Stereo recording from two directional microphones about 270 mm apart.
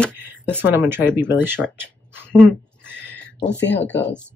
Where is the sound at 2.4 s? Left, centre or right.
Centre.